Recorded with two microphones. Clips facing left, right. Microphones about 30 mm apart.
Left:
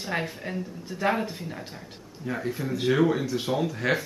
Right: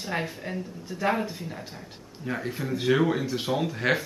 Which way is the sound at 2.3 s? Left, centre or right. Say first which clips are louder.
Left 1 dB; centre.